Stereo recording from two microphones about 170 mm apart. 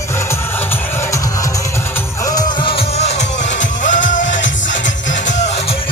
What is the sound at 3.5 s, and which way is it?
Music, 90° left.